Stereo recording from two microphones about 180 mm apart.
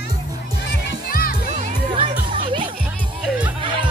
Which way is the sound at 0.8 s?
55° left (ahead or behind).